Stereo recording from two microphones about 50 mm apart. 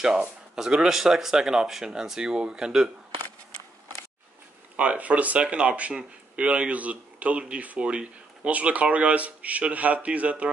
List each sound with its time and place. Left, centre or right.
0.6 s speech: centre
4.7 s speech: right